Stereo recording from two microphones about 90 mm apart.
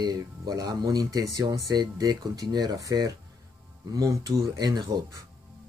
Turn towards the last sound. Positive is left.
turn(degrees=-45)  # may be behind; listen again after turning